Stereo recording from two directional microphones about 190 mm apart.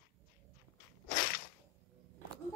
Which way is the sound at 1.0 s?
50° left (ahead or behind).